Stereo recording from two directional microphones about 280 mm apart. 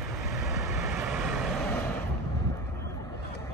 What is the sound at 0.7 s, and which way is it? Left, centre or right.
Vehicle, centre.